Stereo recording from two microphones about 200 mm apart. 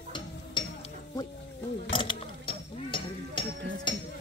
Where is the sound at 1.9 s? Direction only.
25° left (ahead or behind).